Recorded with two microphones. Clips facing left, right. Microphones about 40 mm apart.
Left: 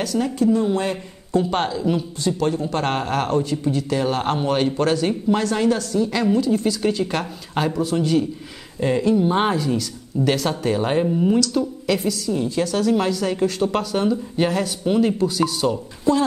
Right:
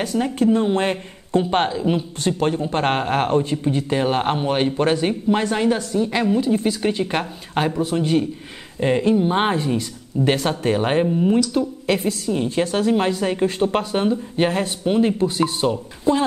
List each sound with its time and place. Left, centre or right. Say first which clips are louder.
0.0 s speech: even; right
0.4 s speech: right 2 dB; right
11.1 s speech: even; centre
11.3 s speech: right 1 dB; right
11.8 s speech: right 1 dB; right